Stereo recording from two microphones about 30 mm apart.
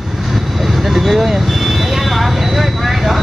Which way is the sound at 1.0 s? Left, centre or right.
Centre.